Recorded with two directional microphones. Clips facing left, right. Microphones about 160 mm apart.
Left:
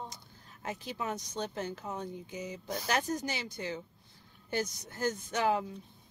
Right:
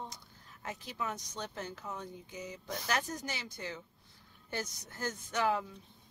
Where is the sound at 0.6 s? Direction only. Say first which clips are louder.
Left 3 dB; 20° left (ahead or behind).